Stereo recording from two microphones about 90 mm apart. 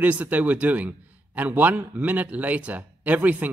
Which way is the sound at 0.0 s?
15° right (ahead or behind).